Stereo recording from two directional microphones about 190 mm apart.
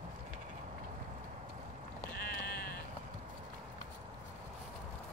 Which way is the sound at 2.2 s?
50° left (ahead or behind).